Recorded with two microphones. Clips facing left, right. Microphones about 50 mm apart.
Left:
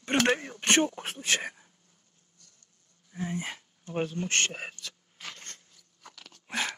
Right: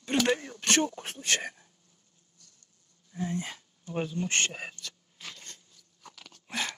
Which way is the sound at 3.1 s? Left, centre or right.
Left.